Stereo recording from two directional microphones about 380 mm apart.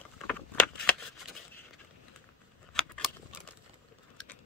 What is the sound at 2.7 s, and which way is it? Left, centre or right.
Scissors, centre.